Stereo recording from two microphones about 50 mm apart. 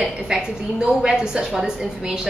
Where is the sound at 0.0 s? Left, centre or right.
Centre.